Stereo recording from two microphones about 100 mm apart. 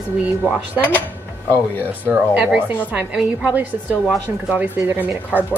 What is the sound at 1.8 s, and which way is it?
A woman's voice, 15° right (ahead or behind).